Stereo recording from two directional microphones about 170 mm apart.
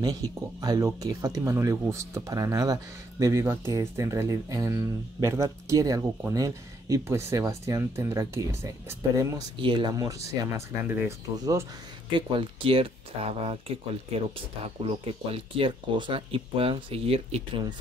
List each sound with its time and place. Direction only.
0.0 s speech: 20° right (ahead or behind)
12.2 s speech: 30° right (ahead or behind)